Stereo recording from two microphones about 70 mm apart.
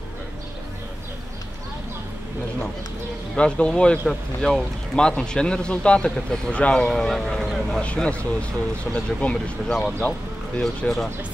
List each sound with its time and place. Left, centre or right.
3.3 s speech: centre
4.1 s speech: centre
6.9 s speech: centre
7.8 s speech: centre